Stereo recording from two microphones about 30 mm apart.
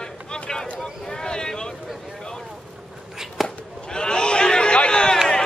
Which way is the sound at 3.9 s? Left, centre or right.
Left.